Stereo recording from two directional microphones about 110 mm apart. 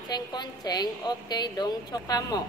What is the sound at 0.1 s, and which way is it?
A woman's voice, 40° left (ahead or behind).